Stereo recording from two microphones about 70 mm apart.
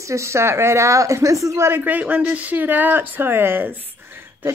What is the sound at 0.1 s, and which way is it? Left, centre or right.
A woman's voice, right.